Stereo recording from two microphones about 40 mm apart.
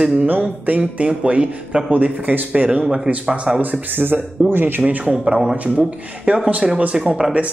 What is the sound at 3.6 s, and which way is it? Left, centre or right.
Speech, right.